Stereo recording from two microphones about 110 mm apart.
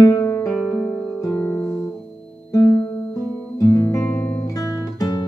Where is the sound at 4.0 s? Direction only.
20° left (ahead or behind).